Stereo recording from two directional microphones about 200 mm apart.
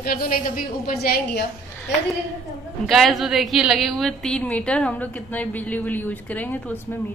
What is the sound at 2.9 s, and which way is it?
A woman's voice, centre (ahead or behind).